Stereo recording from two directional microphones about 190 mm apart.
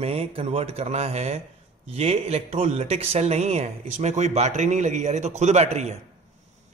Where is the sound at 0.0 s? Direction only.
30° right (ahead or behind).